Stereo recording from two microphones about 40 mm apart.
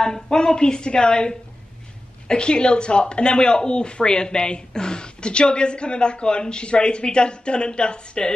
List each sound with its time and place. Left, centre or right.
0.0 s speech: centre